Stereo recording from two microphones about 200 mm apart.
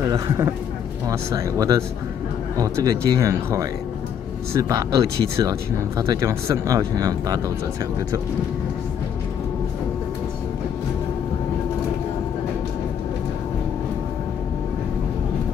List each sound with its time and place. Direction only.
0.1 s speech: 15° right (ahead or behind)